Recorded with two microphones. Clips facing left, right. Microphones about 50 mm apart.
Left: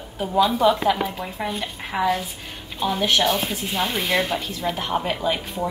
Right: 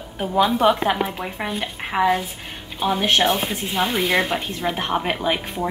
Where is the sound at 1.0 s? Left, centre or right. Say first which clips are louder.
Right 1 dB; right.